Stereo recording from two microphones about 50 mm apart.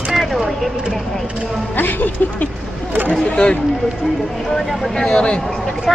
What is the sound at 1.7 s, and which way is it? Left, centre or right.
Speech, left.